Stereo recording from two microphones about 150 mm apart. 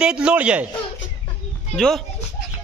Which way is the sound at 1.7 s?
5° left (ahead or behind).